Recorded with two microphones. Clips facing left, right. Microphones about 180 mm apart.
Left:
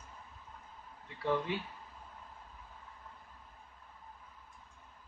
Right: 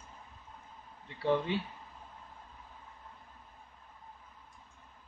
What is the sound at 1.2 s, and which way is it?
Speech, 30° right (ahead or behind).